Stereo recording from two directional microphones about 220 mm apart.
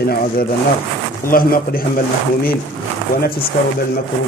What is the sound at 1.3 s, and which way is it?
Speech, 40° left (ahead or behind).